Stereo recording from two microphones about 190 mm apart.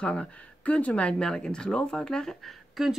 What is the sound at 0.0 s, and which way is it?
Speech, 5° left (ahead or behind).